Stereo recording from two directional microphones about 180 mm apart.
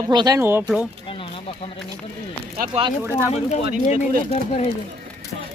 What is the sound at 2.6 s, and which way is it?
Speech, 50° right (ahead or behind).